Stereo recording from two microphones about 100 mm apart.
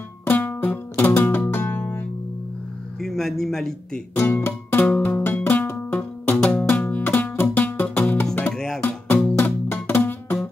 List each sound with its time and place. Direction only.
0.2 s music: 20° left (ahead or behind)
3.0 s speech: 5° left (ahead or behind)
4.1 s music: 20° left (ahead or behind)
8.5 s music: 5° left (ahead or behind)
8.8 s music: 20° left (ahead or behind)